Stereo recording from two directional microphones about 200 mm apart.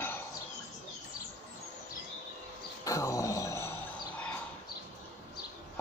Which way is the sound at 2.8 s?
15° left (ahead or behind).